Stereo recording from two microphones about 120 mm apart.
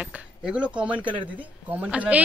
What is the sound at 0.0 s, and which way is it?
Speech, 5° right (ahead or behind).